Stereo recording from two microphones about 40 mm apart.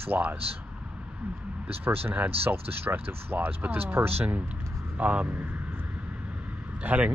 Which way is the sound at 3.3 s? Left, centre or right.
Right.